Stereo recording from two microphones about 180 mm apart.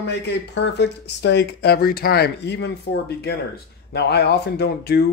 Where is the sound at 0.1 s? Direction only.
75° left (ahead or behind).